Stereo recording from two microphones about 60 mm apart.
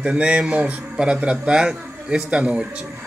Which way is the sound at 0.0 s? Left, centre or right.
Centre.